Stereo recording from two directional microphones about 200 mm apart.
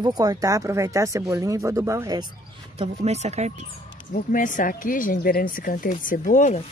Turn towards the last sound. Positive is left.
turn(degrees=40)  # may be behind; listen again after turning